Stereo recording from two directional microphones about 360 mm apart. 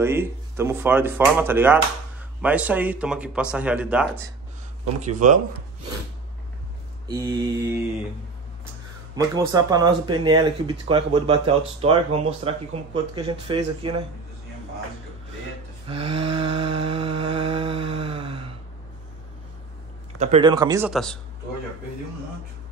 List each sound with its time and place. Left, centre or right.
0.0 s speech: centre
5.0 s speech: right
7.1 s speech: centre
9.1 s speech: centre
15.9 s a sound: centre
20.2 s speech: centre